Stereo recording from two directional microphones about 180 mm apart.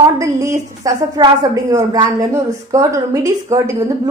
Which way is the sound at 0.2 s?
15° right (ahead or behind).